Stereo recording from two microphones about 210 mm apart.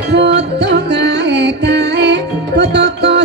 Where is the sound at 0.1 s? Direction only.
55° right (ahead or behind).